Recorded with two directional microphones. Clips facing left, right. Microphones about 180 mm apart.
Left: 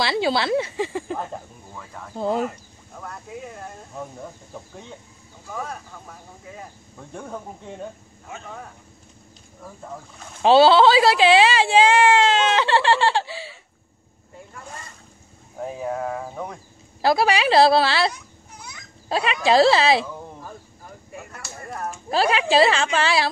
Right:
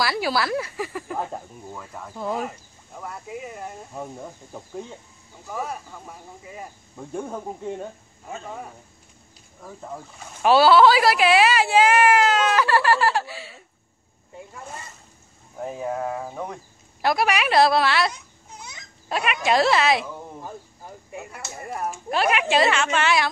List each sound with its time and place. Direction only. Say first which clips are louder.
0.0 s a woman's voice: left 2 dB; 25° left (ahead or behind)
1.1 s speech: even; 5° right (ahead or behind)
2.1 s a woman's voice: left 4 dB; 30° left (ahead or behind)
3.0 s speech: right 1 dB; 5° right (ahead or behind)
5.5 s speech: right 2 dB; 5° right (ahead or behind)
10.4 s a woman's voice: left 1 dB; 25° left (ahead or behind)
15.6 s speech: even; centre (ahead or behind)
17.0 s a woman's voice: left 3 dB; 30° left (ahead or behind)
18.1 s babbling: even; 20° right (ahead or behind)
19.0 s a woman's voice: left 3 dB; 30° left (ahead or behind)
21.1 s speech: right 2 dB; 20° right (ahead or behind)
22.1 s a woman's voice: left 3 dB; 30° left (ahead or behind)